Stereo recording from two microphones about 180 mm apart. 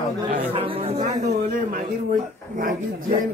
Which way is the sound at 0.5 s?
30° right (ahead or behind).